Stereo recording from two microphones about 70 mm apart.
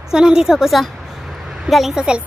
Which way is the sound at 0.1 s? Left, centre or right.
Centre.